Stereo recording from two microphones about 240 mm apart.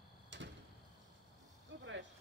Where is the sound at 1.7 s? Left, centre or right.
Right.